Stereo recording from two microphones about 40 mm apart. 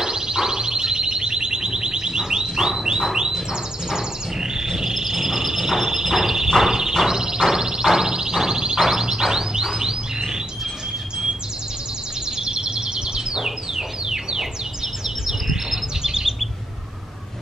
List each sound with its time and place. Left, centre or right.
0.0 s alarm: centre
2.4 s a sound: centre
3.1 s bird: centre
4.6 s a sound: centre
9.8 s chirp: centre
12.4 s bird: centre